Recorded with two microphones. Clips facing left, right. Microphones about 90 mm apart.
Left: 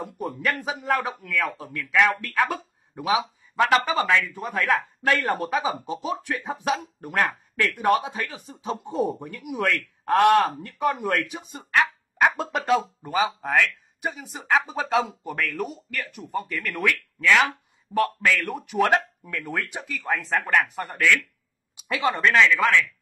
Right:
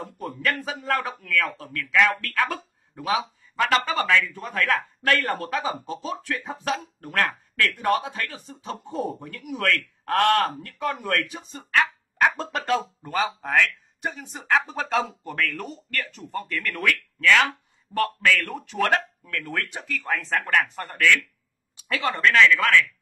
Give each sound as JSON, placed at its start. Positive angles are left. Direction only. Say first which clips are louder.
{"t": 0.4, "sound": "a man's voice", "louder": "right 1 dB", "side_deg": 15}
{"t": 13.1, "sound": "speech", "louder": "left 1 dB", "side_deg": 5}